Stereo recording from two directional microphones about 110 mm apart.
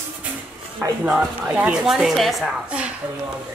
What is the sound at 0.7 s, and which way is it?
A woman's voice, 10° right (ahead or behind).